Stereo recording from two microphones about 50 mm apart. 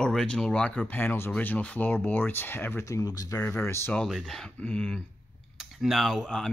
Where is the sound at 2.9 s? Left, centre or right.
Left.